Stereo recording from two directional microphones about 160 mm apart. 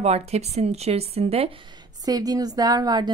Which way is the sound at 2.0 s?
25° right (ahead or behind).